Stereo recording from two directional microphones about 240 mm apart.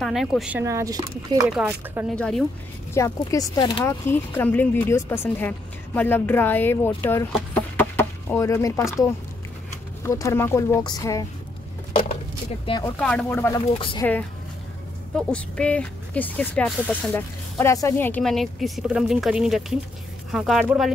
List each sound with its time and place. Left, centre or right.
0.0 s speech: centre
1.4 s speech: centre
7.3 s chicken: centre
10.0 s speech: centre
12.6 s speech: centre
13.0 s speech: centre
13.7 s speech: left
15.1 s speech: centre